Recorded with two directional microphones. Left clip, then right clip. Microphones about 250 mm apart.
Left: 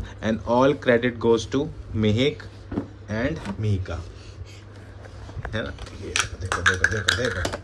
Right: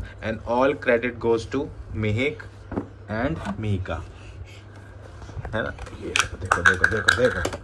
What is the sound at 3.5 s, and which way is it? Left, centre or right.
Speech, centre.